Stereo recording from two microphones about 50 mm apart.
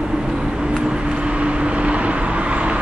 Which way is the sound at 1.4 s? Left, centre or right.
Right.